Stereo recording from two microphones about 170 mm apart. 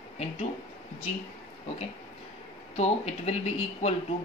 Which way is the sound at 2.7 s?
40° left (ahead or behind).